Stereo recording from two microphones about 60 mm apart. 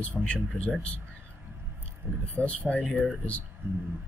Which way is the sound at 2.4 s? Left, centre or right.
Left.